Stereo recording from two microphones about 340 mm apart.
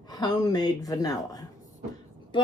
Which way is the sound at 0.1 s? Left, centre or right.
Centre.